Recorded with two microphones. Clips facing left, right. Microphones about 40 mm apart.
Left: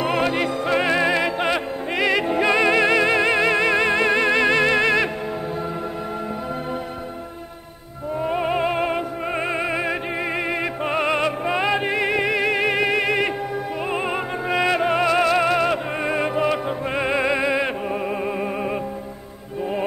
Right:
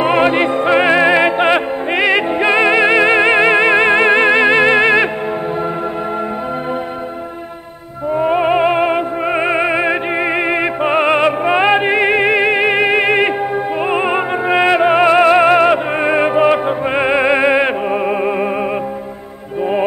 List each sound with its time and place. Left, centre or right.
0.0 s music: right
8.1 s music: right